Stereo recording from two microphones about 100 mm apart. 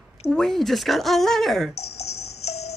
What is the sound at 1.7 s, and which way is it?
Music, 90° left.